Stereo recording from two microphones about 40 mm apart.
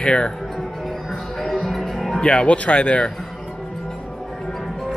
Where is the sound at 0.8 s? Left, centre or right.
Centre.